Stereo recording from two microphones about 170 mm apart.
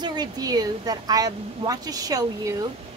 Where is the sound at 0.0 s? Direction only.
25° right (ahead or behind).